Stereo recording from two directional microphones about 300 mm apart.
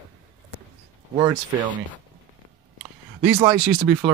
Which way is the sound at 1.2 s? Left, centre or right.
Centre.